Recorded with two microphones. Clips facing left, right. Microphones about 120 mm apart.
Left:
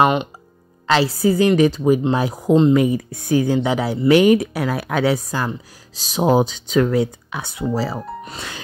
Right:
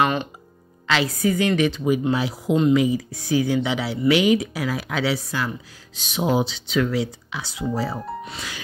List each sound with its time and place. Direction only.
0.0 s speech: 20° left (ahead or behind)
0.8 s a woman's voice: 35° left (ahead or behind); by 7.6 s 50° left (ahead or behind)
7.7 s speech: 90° left
8.3 s speech: 40° left (ahead or behind)